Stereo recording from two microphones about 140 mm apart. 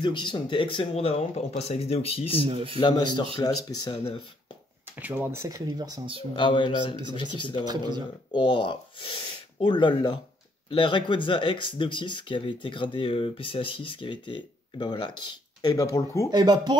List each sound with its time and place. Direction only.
0.0 s speech: 35° left (ahead or behind)
2.4 s speech: 45° right (ahead or behind)
2.8 s speech: 30° left (ahead or behind)
4.9 s speech: 10° right (ahead or behind); by 6.0 s 25° right (ahead or behind)
6.3 s speech: 35° left (ahead or behind)
7.6 s speech: 30° right (ahead or behind)
8.3 s speech: 35° left (ahead or behind)
16.3 s speech: 30° right (ahead or behind)